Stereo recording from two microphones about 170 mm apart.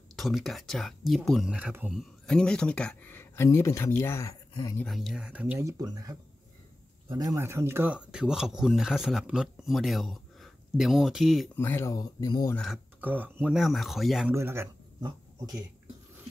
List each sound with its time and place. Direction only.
0.1 s speech: centre (ahead or behind); by 4.4 s 15° left (ahead or behind)
4.8 s speech: centre (ahead or behind)
11.5 s speech: 15° left (ahead or behind)
12.5 s speech: centre (ahead or behind)
13.0 s speech: 10° right (ahead or behind)
14.3 s a man's voice: 15° right (ahead or behind)